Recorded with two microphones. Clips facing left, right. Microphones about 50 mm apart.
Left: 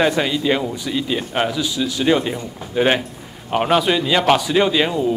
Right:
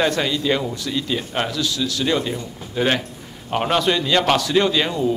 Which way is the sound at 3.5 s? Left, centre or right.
Centre.